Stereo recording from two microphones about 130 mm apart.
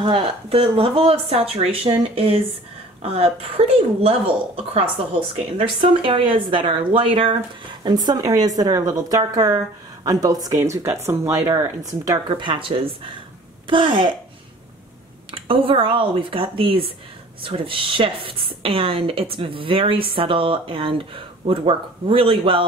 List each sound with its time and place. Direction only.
0.0 s a woman's voice: 40° right (ahead or behind)
15.3 s a woman's voice: 45° right (ahead or behind)